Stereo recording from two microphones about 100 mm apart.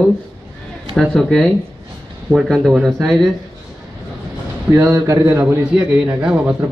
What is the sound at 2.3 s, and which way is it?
Speech, 15° right (ahead or behind).